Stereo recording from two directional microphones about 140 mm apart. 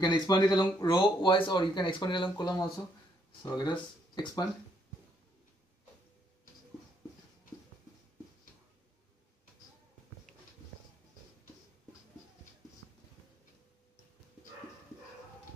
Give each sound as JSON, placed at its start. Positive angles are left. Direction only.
{"t": 0.0, "sound": "speech", "side_deg": 30}